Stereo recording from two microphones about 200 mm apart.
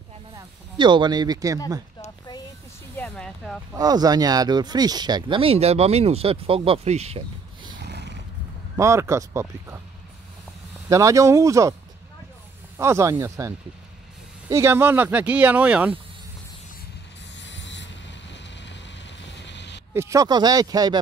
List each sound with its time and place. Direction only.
0.7 s speech: 20° right (ahead or behind)
3.0 s a sound: centre (ahead or behind)
3.7 s speech: 20° right (ahead or behind)
7.8 s roaring cats: 55° right (ahead or behind)
8.7 s speech: 15° right (ahead or behind)
10.9 s speech: 15° right (ahead or behind)
12.7 s speech: 15° right (ahead or behind)
17.4 s vehicle: 65° left (ahead or behind)
19.9 s speech: 15° right (ahead or behind)